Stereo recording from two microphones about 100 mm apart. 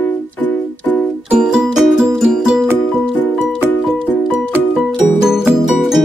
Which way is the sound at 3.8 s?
Centre (ahead or behind).